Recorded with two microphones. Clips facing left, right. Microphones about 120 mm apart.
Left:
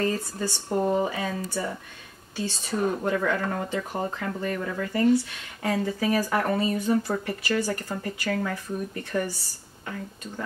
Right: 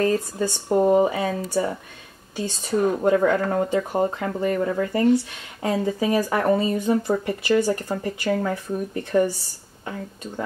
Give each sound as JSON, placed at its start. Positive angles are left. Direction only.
{"t": 0.0, "sound": "speech", "side_deg": -15}